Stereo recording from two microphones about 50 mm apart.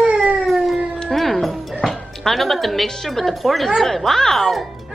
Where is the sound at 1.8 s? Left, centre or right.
Centre.